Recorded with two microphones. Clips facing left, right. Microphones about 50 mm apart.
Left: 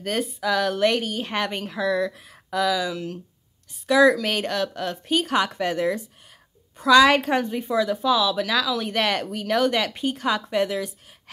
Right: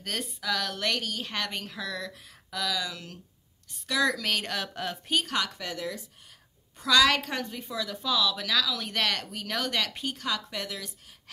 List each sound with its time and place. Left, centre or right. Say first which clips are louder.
0.0 s speech: left 8 dB; centre
4.5 s a woman's voice: left 7 dB; centre
5.3 s a woman's voice: left 8 dB; left
5.6 s speech: left 11 dB; left
6.8 s speech: left 7 dB; centre
10.1 s a woman's voice: left 10 dB; left